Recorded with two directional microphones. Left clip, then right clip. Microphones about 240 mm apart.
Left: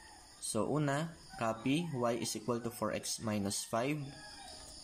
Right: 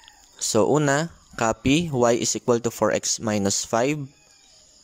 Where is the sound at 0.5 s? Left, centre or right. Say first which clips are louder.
Right 15 dB; right.